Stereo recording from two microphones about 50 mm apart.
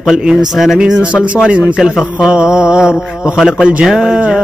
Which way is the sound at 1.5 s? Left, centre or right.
Centre.